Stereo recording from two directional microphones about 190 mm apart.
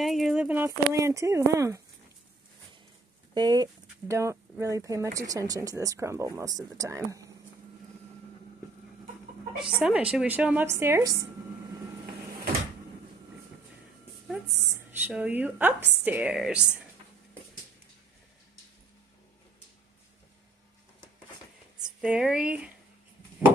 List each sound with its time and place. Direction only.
0.0 s speech: centre (ahead or behind)
3.3 s speech: 20° right (ahead or behind)
9.8 s speech: 5° right (ahead or behind)
14.7 s speech: 10° right (ahead or behind)
21.8 s speech: 5° right (ahead or behind)